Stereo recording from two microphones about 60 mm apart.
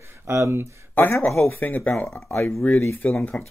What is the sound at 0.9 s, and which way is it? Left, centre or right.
Speech, left.